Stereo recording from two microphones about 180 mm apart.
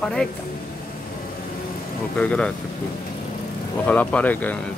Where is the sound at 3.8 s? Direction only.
5° left (ahead or behind).